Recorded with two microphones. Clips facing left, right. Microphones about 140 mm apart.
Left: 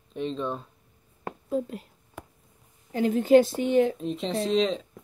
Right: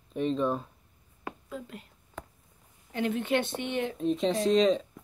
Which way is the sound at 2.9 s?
40° left (ahead or behind).